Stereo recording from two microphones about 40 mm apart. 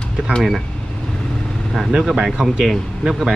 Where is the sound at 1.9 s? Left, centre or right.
Centre.